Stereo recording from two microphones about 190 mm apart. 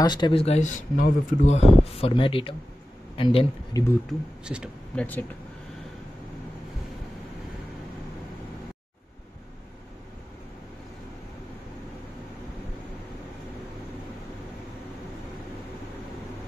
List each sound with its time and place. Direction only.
0.0 s a man's voice: 25° left (ahead or behind)
4.5 s speech: 5° right (ahead or behind)
4.9 s speech: 10° left (ahead or behind)